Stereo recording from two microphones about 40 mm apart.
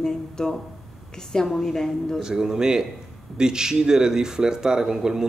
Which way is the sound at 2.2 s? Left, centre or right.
Centre.